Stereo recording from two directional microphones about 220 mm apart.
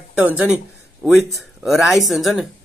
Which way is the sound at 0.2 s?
5° right (ahead or behind).